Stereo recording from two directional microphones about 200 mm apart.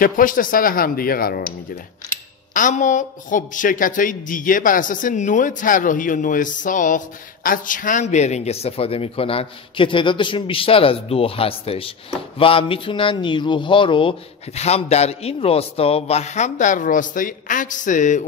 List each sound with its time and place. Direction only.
0.0 s speech: 45° left (ahead or behind)
2.5 s a man's voice: 40° left (ahead or behind)